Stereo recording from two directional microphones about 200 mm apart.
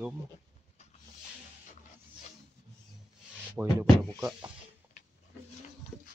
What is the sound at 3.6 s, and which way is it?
Speech, 10° right (ahead or behind).